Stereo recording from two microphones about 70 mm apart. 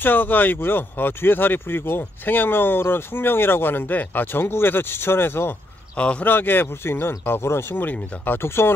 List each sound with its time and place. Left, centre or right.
0.0 s speech: left
5.9 s speech: centre
6.3 s speech: left